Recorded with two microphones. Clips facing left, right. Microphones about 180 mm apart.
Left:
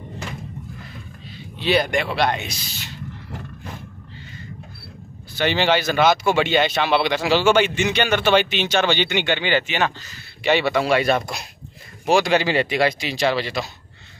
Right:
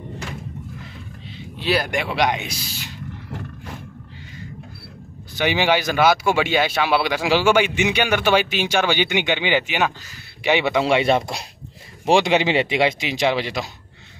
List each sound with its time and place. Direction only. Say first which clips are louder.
1.6 s speech: left 2 dB; 5° right (ahead or behind)
5.3 s speech: even; 10° right (ahead or behind)